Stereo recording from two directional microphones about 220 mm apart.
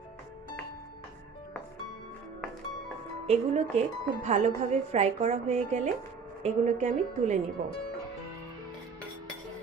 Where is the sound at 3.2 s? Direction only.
30° right (ahead or behind).